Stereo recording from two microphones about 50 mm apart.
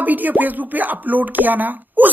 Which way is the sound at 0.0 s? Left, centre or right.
Right.